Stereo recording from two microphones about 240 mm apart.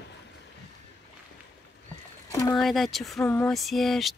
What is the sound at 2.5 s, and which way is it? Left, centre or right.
Speech, centre.